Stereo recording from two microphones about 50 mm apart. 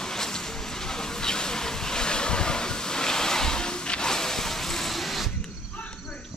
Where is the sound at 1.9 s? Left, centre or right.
Centre.